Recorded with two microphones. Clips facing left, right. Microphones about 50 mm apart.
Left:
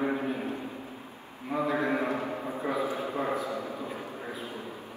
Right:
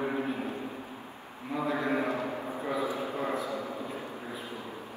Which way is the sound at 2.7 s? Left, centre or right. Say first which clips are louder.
Even; left.